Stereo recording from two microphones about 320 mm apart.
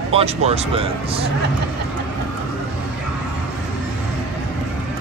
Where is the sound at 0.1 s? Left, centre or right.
Centre.